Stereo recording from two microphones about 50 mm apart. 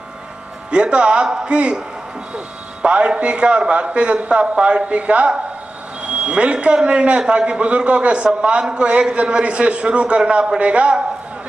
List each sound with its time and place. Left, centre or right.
0.7 s a man's voice: centre
2.8 s a man's voice: centre